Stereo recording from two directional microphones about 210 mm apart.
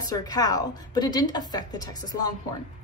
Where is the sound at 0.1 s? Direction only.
15° left (ahead or behind).